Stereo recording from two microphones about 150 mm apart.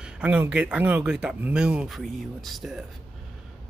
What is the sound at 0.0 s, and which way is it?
Speech, 10° right (ahead or behind).